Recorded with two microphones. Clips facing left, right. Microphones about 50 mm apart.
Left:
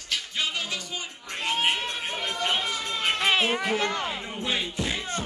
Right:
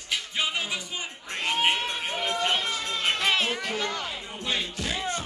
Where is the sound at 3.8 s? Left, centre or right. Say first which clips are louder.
Left 3 dB; left.